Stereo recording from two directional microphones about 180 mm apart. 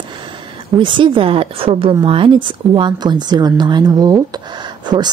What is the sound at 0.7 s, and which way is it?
Speech, 25° right (ahead or behind).